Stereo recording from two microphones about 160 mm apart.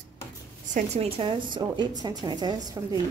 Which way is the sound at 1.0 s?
35° right (ahead or behind).